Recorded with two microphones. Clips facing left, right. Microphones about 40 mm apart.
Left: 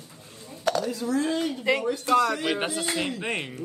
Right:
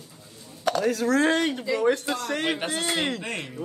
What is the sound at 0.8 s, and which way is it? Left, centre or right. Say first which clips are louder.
Speech: right 5 dB; right.